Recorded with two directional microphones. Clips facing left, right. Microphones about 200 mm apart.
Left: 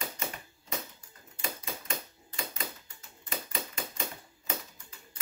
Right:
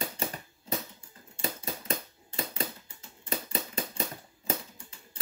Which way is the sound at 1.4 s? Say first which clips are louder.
Right 3 dB; 35° right (ahead or behind).